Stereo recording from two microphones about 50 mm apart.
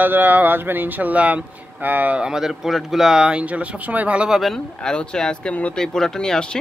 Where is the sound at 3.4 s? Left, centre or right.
Right.